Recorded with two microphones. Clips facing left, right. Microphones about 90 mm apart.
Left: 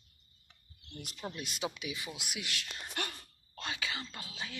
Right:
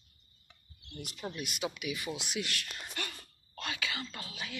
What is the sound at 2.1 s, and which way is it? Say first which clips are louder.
Speech: right 5 dB; 10° left (ahead or behind).